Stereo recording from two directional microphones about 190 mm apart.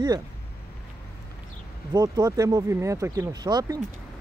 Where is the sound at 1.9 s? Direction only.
20° right (ahead or behind).